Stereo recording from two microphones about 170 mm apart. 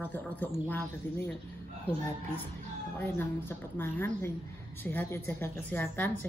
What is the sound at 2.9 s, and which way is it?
Speech, 10° left (ahead or behind).